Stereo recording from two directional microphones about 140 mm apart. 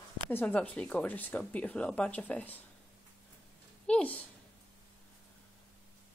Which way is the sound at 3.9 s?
10° left (ahead or behind).